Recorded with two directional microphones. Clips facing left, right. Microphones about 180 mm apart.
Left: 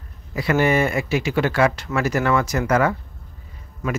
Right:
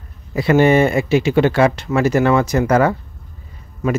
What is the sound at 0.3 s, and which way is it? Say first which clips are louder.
Speech: right 6 dB; 25° right (ahead or behind).